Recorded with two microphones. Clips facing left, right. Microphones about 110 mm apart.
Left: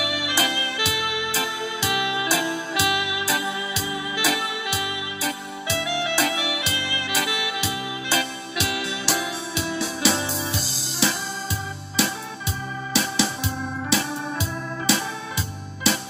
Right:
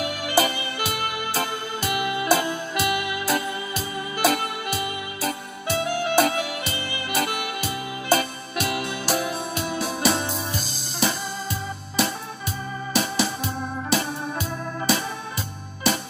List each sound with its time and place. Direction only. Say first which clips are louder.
0.0 s music: right 3 dB; 50° right (ahead or behind)
12.9 s organ: even; 50° right (ahead or behind)